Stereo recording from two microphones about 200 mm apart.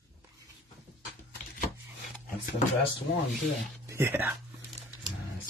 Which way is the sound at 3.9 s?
10° right (ahead or behind).